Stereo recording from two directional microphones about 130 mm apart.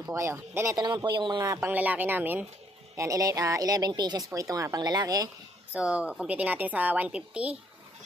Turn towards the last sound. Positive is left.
turn(degrees=-10)  # may be behind; listen again after turning